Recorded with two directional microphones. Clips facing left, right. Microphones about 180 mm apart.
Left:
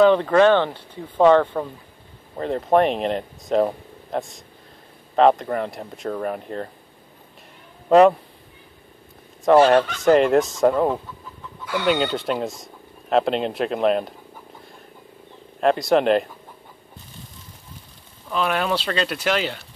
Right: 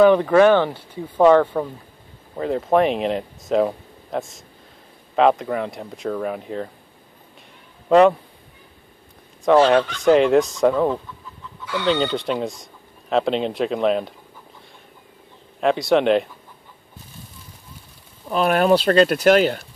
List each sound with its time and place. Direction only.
0.0 s speech: 10° right (ahead or behind)
9.4 s speech: 5° left (ahead or behind)
15.6 s speech: centre (ahead or behind)
18.3 s speech: 45° right (ahead or behind)